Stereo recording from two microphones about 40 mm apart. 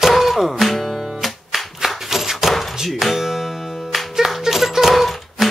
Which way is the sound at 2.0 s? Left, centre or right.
Centre.